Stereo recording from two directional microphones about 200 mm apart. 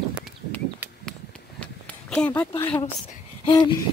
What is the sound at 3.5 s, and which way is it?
Hoot, 20° left (ahead or behind).